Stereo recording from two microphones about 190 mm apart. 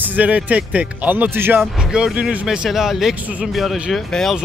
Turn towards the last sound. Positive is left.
turn(degrees=0)  # may be behind; listen again after turning